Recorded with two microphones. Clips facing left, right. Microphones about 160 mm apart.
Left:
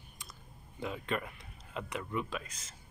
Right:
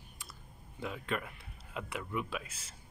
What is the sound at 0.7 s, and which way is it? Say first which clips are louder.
Speech: left 1 dB; centre (ahead or behind).